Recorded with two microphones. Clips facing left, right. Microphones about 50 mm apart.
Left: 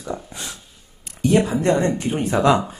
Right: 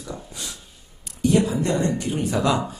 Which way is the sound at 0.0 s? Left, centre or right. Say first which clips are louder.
Left 5 dB; left.